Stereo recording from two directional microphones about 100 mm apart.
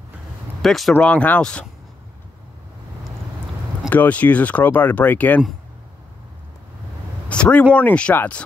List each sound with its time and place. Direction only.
0.6 s speech: centre (ahead or behind)
0.9 s speech: 15° left (ahead or behind)
3.9 s speech: 15° left (ahead or behind)
7.2 s a sound: 10° left (ahead or behind)
7.7 s speech: 15° left (ahead or behind)